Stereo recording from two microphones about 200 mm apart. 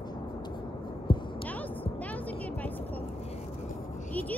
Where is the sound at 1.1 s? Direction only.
25° left (ahead or behind).